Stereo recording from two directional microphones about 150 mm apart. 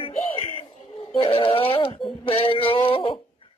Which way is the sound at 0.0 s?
40° left (ahead or behind).